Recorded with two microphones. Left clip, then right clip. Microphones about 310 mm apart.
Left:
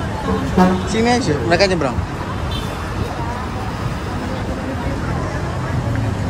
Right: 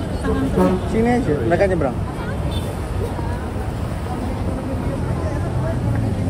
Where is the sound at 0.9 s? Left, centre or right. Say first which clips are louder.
Left 2 dB; centre.